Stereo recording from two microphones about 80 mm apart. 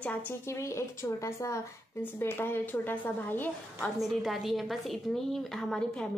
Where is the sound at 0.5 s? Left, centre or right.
Left.